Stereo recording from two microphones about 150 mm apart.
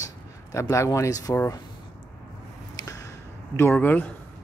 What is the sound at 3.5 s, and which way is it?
Speech, 15° left (ahead or behind).